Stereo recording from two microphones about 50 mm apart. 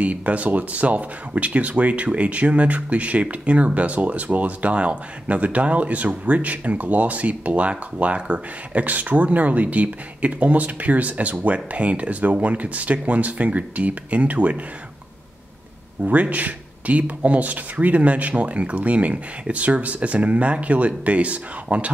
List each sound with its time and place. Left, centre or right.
0.0 s speech: right
16.0 s speech: right